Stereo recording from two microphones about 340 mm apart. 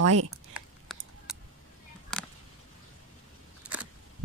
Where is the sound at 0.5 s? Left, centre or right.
Centre.